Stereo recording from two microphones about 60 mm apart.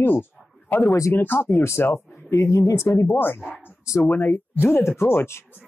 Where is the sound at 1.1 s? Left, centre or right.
Left.